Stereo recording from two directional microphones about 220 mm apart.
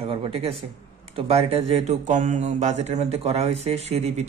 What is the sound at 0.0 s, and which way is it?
A man's voice, 25° right (ahead or behind).